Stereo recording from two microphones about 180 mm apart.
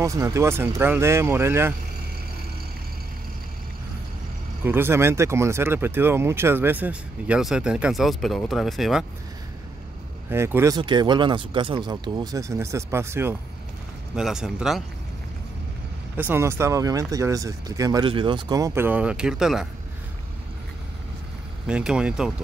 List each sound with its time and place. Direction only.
0.0 s speech: 15° right (ahead or behind)
4.6 s speech: 15° right (ahead or behind)
10.3 s speech: 15° right (ahead or behind)
14.1 s speech: 5° right (ahead or behind)
16.2 s speech: 10° right (ahead or behind)
21.6 s speech: 5° right (ahead or behind)